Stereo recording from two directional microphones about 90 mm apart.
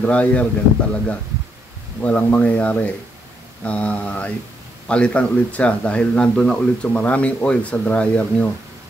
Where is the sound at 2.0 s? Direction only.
15° left (ahead or behind).